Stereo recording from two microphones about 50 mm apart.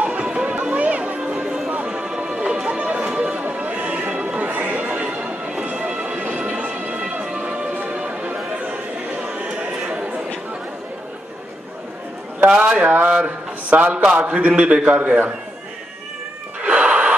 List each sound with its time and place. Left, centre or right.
0.0 s music: right
1.2 s a sound: right
1.9 s music: centre
4.1 s horse: right
7.9 s music: right
9.6 s a sound: right
12.4 s a man's voice: right
16.6 s cat: right